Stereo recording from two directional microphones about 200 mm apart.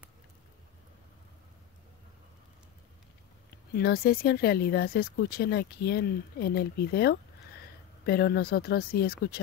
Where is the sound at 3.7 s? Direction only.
50° left (ahead or behind).